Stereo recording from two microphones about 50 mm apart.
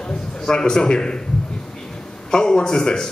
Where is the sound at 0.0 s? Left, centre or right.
Centre.